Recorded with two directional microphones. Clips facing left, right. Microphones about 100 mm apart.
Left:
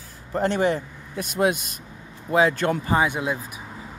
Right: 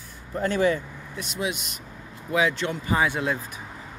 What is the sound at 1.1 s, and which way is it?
Speech, 50° left (ahead or behind).